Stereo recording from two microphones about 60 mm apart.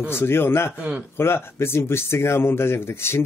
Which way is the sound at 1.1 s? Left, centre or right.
Left.